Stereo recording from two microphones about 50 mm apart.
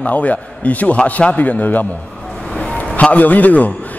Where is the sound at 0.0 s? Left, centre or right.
Left.